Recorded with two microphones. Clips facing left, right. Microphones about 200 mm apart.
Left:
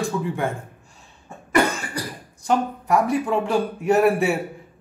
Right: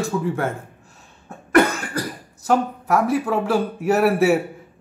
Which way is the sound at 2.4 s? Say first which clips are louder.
Right 2 dB; 5° right (ahead or behind).